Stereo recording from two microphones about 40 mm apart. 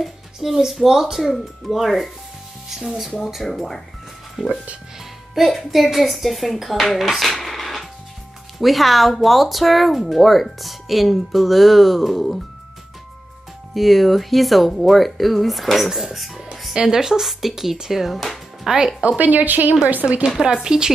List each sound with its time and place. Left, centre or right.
0.0 s a sound: centre
0.7 s speech: centre
3.4 s speech: centre
7.1 s music: centre
8.5 s speech: centre
13.7 s speech: centre
19.1 s speech: right
20.2 s speech: centre